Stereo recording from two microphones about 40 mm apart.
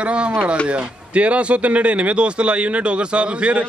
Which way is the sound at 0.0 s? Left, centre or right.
Right.